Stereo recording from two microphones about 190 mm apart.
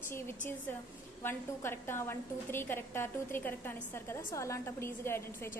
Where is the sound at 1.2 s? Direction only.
10° left (ahead or behind).